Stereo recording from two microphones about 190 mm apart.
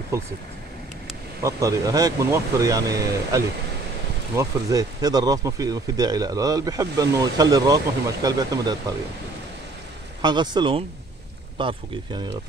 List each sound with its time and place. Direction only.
0.1 s speech: 15° right (ahead or behind)
1.4 s speech: 15° right (ahead or behind)
10.2 s speech: 25° right (ahead or behind)